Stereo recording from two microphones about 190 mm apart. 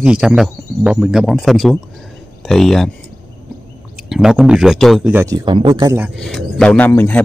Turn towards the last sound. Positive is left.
turn(degrees=10)  # may be behind; listen again after turning